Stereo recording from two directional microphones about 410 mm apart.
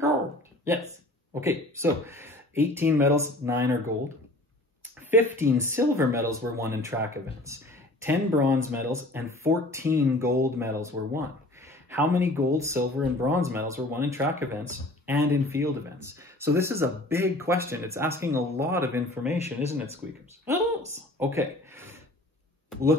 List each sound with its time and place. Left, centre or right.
1.3 s speech: centre
5.1 s speech: centre
19.2 s speech: centre
20.4 s a sound: centre
22.7 s speech: centre